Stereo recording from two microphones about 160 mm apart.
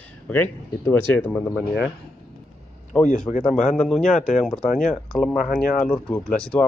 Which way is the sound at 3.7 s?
5° left (ahead or behind).